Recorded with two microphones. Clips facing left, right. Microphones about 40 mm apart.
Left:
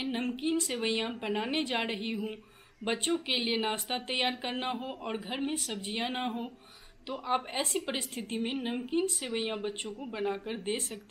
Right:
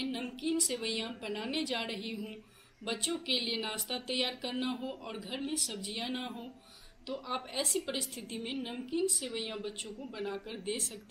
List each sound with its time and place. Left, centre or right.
0.0 s a woman's voice: left